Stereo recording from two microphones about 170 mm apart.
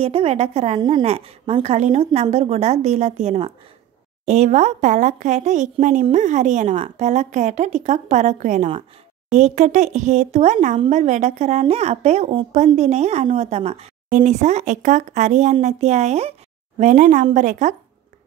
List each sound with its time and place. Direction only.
0.0 s a woman's voice: 35° right (ahead or behind)